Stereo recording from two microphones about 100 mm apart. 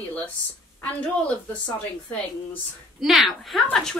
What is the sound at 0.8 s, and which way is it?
Speech, 15° left (ahead or behind).